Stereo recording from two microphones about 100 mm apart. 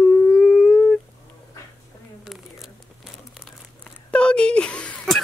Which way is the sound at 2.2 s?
Centre (ahead or behind).